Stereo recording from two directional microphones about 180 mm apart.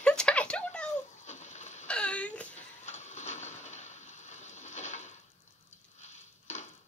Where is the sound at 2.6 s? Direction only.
40° left (ahead or behind).